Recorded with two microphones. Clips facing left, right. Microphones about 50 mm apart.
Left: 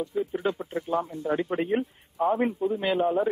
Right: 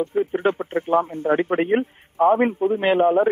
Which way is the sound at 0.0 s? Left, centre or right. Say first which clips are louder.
Right 7 dB; right.